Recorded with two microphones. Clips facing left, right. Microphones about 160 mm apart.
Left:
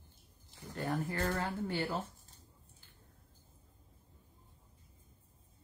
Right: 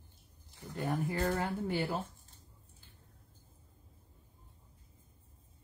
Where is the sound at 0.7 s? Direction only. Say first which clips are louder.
Right 2 dB; 15° right (ahead or behind).